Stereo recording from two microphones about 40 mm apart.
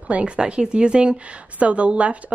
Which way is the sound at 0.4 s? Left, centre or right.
Right.